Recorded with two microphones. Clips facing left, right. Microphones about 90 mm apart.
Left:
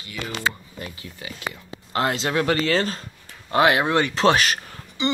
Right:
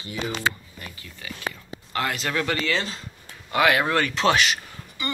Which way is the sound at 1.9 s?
25° left (ahead or behind).